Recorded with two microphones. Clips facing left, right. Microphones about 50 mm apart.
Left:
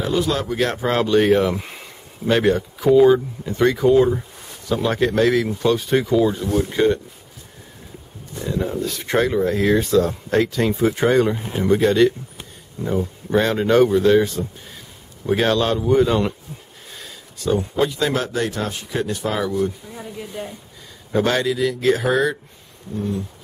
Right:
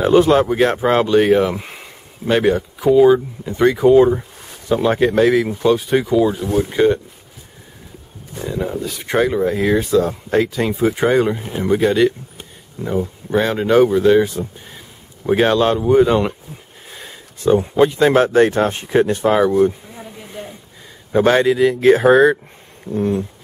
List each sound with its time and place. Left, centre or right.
0.0 s speech: right; by 7.0 s centre
8.4 s speech: centre
12.8 s speech: right
13.3 s speech: centre; by 19.7 s right
21.1 s speech: right
22.9 s speech: right